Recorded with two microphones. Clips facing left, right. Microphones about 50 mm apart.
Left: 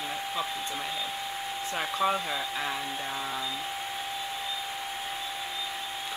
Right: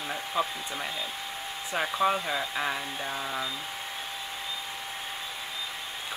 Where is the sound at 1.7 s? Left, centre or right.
Centre.